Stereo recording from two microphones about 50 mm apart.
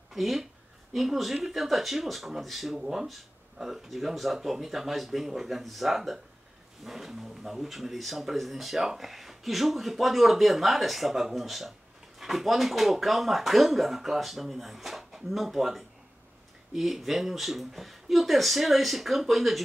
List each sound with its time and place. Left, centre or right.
0.1 s speech: centre